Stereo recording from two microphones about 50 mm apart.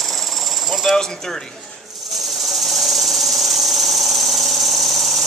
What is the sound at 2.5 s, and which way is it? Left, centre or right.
Engine, centre.